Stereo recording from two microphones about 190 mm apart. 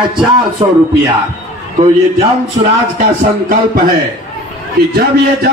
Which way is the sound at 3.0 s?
50° right (ahead or behind).